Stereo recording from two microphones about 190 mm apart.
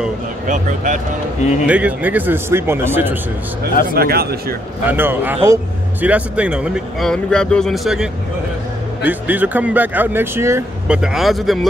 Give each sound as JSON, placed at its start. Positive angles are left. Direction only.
{"t": 0.5, "sound": "a man's voice", "side_deg": -40}
{"t": 1.7, "sound": "speech", "side_deg": -5}
{"t": 3.9, "sound": "speech", "side_deg": -55}
{"t": 4.8, "sound": "speech", "side_deg": -10}
{"t": 11.0, "sound": "speech", "side_deg": 0}